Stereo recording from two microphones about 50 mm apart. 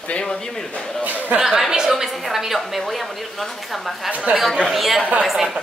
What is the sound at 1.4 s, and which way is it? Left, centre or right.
Speech, centre.